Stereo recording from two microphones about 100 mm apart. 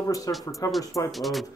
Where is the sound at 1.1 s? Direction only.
Centre (ahead or behind).